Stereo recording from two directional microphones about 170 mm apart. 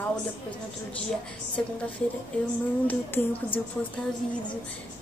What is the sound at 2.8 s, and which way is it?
Speech, 10° left (ahead or behind).